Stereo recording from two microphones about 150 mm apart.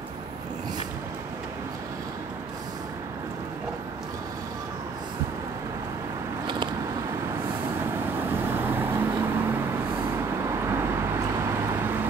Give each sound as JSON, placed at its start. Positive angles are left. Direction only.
{"t": 7.8, "sound": "vehicle", "side_deg": -15}